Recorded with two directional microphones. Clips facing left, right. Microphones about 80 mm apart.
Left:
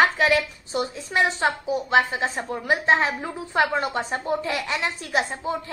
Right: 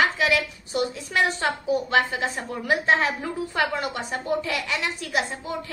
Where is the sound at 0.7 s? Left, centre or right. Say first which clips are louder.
Even; left.